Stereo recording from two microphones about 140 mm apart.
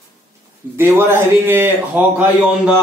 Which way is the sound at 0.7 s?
15° right (ahead or behind).